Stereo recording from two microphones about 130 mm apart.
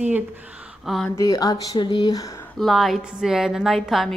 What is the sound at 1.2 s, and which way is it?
Speech, 30° left (ahead or behind).